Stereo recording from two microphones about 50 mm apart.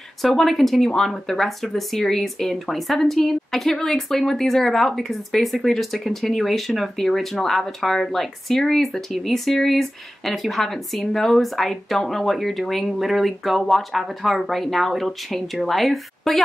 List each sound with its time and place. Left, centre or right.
0.2 s speech: centre